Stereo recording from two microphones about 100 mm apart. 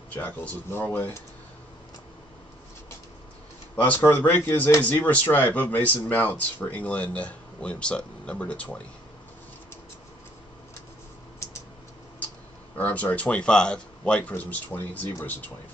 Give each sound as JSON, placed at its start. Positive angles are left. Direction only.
{"t": 0.1, "sound": "speech", "side_deg": 15}
{"t": 3.7, "sound": "speech", "side_deg": 15}
{"t": 12.7, "sound": "speech", "side_deg": 15}